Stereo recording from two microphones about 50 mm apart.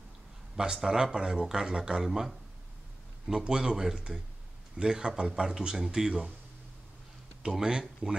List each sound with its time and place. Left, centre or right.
0.7 s speech: centre
7.5 s speech: centre